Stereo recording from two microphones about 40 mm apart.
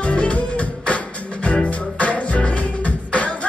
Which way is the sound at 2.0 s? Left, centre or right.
Left.